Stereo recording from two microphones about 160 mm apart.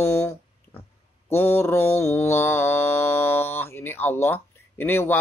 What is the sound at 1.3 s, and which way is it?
Mantra, 15° left (ahead or behind).